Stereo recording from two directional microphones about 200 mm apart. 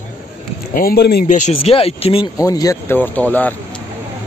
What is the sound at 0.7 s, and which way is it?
Speech, 45° left (ahead or behind).